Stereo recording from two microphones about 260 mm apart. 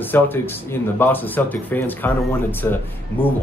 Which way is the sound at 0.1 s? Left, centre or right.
Centre.